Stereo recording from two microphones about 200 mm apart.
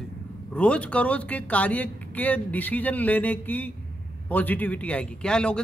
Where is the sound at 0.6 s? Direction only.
5° left (ahead or behind).